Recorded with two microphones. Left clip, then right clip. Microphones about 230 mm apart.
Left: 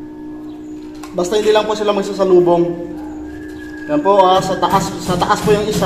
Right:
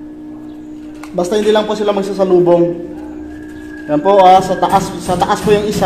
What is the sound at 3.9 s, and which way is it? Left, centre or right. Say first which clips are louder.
A man's voice: right 4 dB; right.